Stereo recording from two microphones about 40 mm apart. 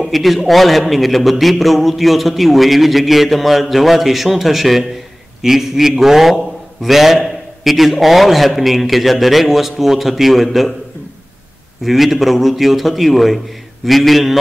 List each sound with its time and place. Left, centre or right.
0.0 s a man's voice: centre
11.8 s a man's voice: centre